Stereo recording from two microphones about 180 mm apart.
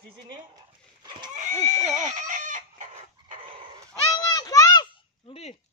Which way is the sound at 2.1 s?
45° right (ahead or behind).